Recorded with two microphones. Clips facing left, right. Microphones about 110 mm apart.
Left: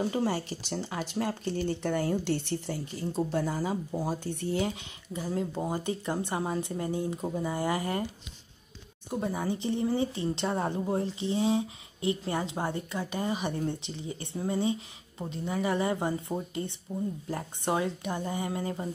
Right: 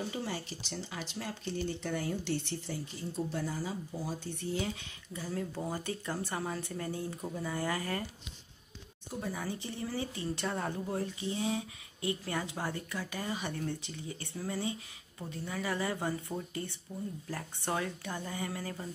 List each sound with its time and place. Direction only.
0.0 s speech: 50° left (ahead or behind)
4.7 s a woman's voice: 20° left (ahead or behind)
9.2 s a woman's voice: 20° left (ahead or behind)